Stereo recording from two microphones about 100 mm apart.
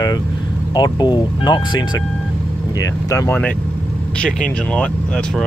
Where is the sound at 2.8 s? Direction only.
35° left (ahead or behind).